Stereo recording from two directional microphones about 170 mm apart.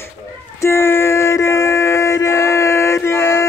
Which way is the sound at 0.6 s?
15° left (ahead or behind).